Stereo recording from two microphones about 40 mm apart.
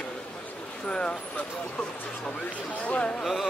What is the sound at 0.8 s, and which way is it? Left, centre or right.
Speech, left.